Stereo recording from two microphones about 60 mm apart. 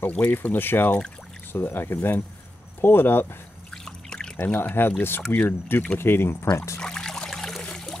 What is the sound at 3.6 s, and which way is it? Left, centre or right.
Trickle, centre.